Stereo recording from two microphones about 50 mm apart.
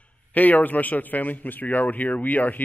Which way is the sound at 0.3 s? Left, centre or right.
Left.